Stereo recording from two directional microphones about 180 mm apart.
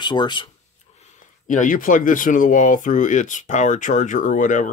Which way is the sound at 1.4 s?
45° left (ahead or behind).